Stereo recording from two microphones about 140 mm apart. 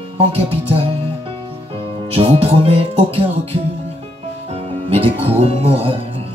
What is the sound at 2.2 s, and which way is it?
Speech, 45° right (ahead or behind).